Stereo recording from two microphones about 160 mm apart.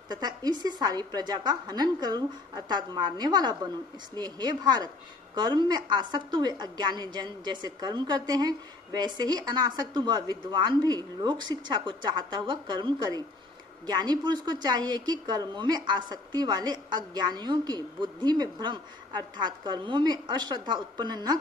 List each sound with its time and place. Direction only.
0.1 s a woman's voice: 25° right (ahead or behind)